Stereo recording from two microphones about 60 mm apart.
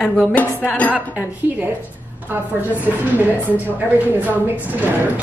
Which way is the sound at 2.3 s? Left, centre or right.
Right.